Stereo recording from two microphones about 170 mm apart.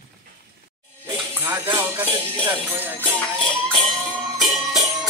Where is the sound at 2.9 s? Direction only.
5° left (ahead or behind).